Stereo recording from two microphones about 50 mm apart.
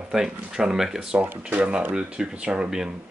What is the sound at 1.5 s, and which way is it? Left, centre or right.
Speech, right.